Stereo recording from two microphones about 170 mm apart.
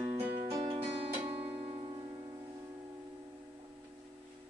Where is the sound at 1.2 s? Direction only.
35° right (ahead or behind).